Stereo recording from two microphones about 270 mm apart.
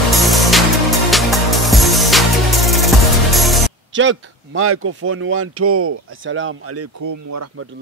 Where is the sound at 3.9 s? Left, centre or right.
Right.